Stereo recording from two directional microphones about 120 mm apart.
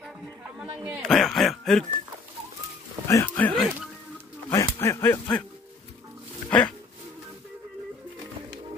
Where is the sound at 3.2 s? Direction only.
15° left (ahead or behind).